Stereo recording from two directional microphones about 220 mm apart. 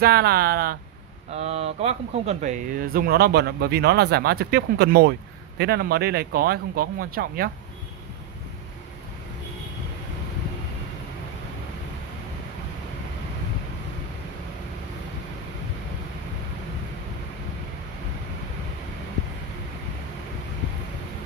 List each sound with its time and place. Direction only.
0.0 s speech: 45° right (ahead or behind)
1.3 s speech: 30° right (ahead or behind); by 7.5 s 45° right (ahead or behind)